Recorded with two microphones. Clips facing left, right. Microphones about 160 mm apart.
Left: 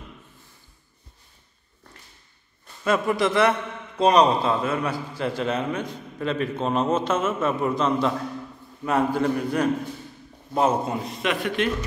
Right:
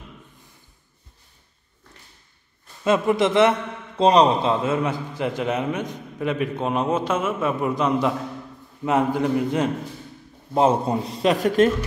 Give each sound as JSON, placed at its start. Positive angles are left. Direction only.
{"t": 2.8, "sound": "a man's voice", "side_deg": -20}